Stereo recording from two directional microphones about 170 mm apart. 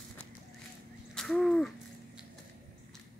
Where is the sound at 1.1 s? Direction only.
Centre (ahead or behind).